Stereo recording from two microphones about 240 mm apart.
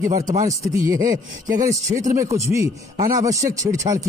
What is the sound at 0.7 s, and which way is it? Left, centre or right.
Speech, centre.